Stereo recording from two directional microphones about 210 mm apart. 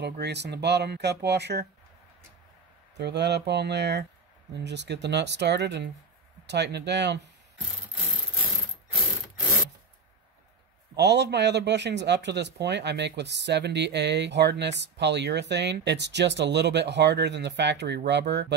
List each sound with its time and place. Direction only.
0.0 s speech: 55° right (ahead or behind)
3.0 s speech: 55° right (ahead or behind)
11.0 s speech: 55° right (ahead or behind)